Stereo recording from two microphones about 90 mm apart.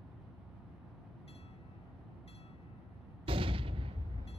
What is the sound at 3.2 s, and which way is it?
Artillery fire, 80° right.